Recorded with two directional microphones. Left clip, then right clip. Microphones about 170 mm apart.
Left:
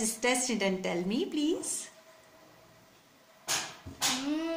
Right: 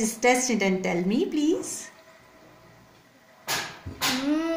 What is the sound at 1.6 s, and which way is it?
Speech, 25° left (ahead or behind).